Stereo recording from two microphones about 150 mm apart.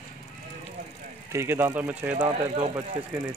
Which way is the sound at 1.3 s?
15° right (ahead or behind).